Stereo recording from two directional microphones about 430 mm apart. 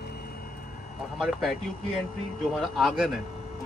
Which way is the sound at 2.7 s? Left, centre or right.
Centre.